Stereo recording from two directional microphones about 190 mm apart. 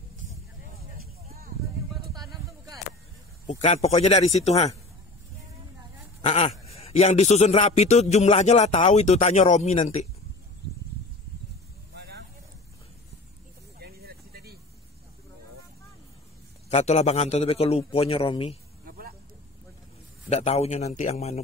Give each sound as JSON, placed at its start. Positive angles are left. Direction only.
{"t": 2.1, "sound": "a sound", "side_deg": -20}
{"t": 3.4, "sound": "a man's voice", "side_deg": 35}
{"t": 6.2, "sound": "a man's voice", "side_deg": 30}
{"t": 11.9, "sound": "vehicle", "side_deg": -60}
{"t": 13.7, "sound": "vehicle", "side_deg": -55}
{"t": 16.6, "sound": "a man's voice", "side_deg": 35}
{"t": 18.9, "sound": "vehicle", "side_deg": -50}
{"t": 20.2, "sound": "a man's voice", "side_deg": 35}